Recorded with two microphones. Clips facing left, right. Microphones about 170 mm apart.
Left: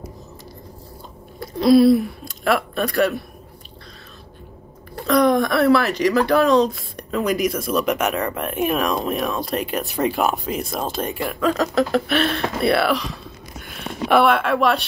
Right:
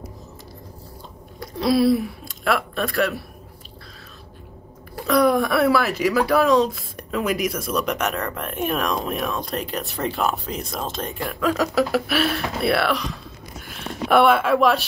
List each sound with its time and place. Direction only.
1.4 s speech: centre (ahead or behind)
4.9 s speech: 5° right (ahead or behind)
9.9 s speech: 15° left (ahead or behind)
10.5 s speech: centre (ahead or behind)